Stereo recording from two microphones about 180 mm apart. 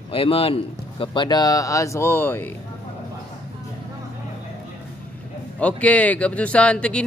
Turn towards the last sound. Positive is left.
turn(degrees=5)  # may be behind; listen again after turning